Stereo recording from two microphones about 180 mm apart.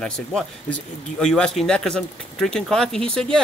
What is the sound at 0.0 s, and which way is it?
Speech, 5° left (ahead or behind).